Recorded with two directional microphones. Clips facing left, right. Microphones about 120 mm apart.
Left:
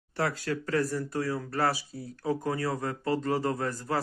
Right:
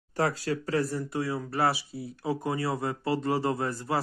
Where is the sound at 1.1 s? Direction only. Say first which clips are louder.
Right 1 dB; 15° right (ahead or behind).